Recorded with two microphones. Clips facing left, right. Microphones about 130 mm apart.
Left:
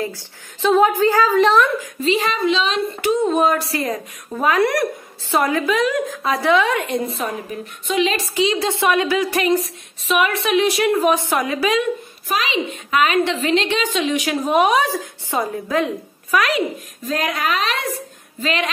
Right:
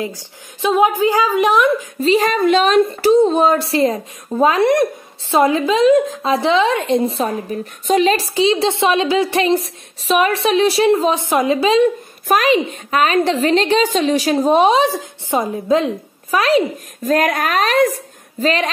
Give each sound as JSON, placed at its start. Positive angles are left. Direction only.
{"t": 0.0, "sound": "a woman's voice", "side_deg": -15}
{"t": 2.0, "sound": "speech", "side_deg": -40}
{"t": 3.0, "sound": "a woman's voice", "side_deg": -30}
{"t": 7.8, "sound": "a woman's voice", "side_deg": -40}
{"t": 12.3, "sound": "a woman's voice", "side_deg": -50}
{"t": 17.0, "sound": "a woman's voice", "side_deg": -55}